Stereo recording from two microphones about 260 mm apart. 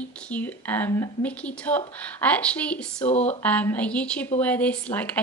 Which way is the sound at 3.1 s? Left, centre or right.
Left.